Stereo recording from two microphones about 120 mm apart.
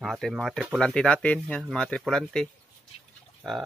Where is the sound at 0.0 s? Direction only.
Centre (ahead or behind).